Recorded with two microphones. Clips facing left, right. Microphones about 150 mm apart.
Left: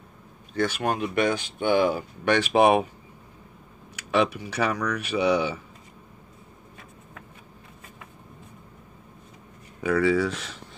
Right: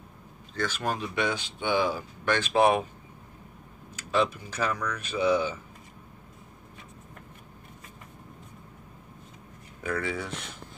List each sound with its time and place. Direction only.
0.6 s speech: 60° left (ahead or behind); by 2.9 s 80° left
3.9 s speech: 85° left
9.8 s speech: 90° left